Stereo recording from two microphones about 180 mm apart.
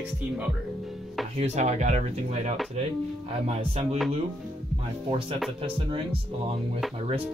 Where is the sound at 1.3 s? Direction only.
40° right (ahead or behind).